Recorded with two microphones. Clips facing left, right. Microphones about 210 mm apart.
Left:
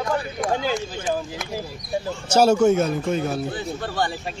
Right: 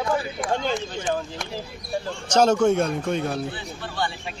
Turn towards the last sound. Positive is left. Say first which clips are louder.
# left 4 dB
turn(degrees=40)  # may be behind; listen again after turning